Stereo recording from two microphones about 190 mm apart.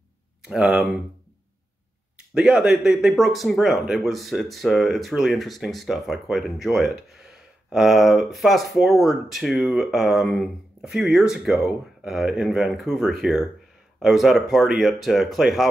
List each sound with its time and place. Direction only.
0.4 s speech: 5° right (ahead or behind)
2.1 s speech: 5° right (ahead or behind)